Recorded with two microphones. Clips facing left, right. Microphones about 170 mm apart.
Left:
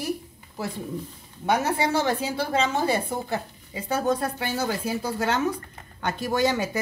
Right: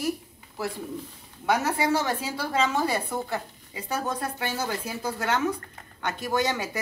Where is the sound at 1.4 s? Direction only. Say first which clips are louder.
Left 1 dB; 25° left (ahead or behind).